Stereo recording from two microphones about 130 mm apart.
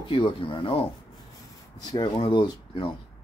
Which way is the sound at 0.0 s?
40° left (ahead or behind).